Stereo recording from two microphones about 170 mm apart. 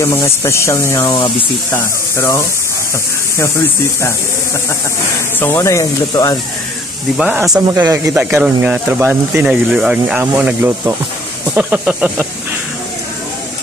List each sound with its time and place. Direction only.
0.0 s speech: 15° left (ahead or behind)
1.0 s speech: 30° left (ahead or behind)
1.7 s speech: 15° left (ahead or behind)
5.4 s speech: 15° left (ahead or behind)
7.2 s speech: 5° right (ahead or behind)